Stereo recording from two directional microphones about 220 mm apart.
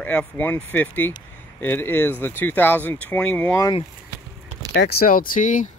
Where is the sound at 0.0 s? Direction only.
5° left (ahead or behind).